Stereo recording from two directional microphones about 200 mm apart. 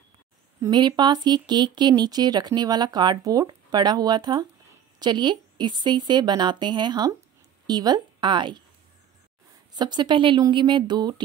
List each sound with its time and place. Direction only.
0.6 s a woman's voice: 20° right (ahead or behind)
9.8 s speech: 20° right (ahead or behind)